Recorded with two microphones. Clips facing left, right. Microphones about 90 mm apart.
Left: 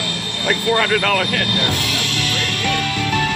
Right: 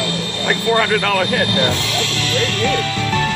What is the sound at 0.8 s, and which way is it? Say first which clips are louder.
Speech: right 1 dB; 10° right (ahead or behind).